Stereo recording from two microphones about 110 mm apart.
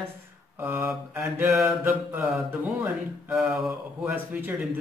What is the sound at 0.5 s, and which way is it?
A man's voice, 25° right (ahead or behind).